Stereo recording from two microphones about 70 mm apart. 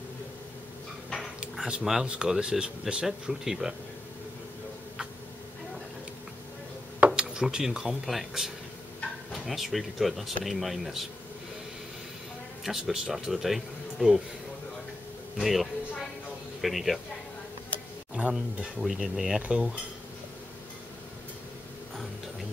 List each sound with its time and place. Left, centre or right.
1.4 s speech: centre
7.1 s speech: centre
12.6 s speech: centre
15.3 s a sound: centre
16.6 s speech: centre
18.3 s speech: centre